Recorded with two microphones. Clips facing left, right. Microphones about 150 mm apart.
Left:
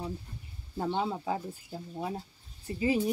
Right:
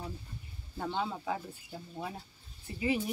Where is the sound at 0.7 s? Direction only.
25° left (ahead or behind).